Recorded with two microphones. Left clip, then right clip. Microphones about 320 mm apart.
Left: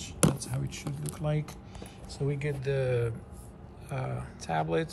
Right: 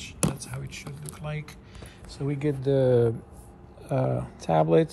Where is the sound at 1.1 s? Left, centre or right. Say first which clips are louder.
Left 3 dB; centre.